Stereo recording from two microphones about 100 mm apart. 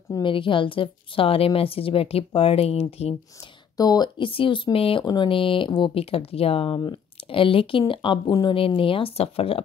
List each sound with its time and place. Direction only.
0.2 s speech: 55° left (ahead or behind); by 3.2 s 85° left
3.3 s speech: 40° left (ahead or behind)
4.2 s speech: 60° left (ahead or behind)
4.7 s speech: 70° left (ahead or behind)
5.0 s speech: 50° left (ahead or behind)
5.9 s speech: 75° left (ahead or behind); by 8.2 s 60° left (ahead or behind)
8.3 s speech: 45° left (ahead or behind)
8.5 s speech: 65° left (ahead or behind); by 9.6 s 80° left